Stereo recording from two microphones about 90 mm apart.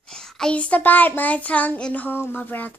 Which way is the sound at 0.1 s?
10° left (ahead or behind).